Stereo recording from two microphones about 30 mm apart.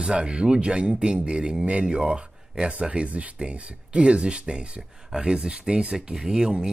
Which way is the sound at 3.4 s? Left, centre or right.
Right.